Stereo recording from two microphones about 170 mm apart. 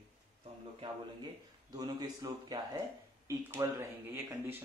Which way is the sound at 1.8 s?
25° right (ahead or behind).